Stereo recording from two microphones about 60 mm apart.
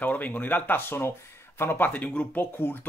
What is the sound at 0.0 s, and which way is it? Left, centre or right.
Speech, left.